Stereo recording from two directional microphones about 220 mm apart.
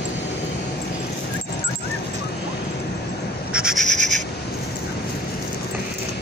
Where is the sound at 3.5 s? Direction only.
5° right (ahead or behind).